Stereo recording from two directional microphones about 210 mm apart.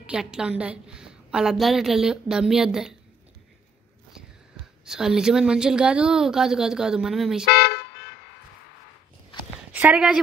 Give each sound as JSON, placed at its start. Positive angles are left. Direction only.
{"t": 0.0, "sound": "a woman's voice", "side_deg": -5}
{"t": 4.8, "sound": "a woman's voice", "side_deg": -5}
{"t": 7.4, "sound": "toot", "side_deg": 50}
{"t": 9.7, "sound": "speech", "side_deg": -10}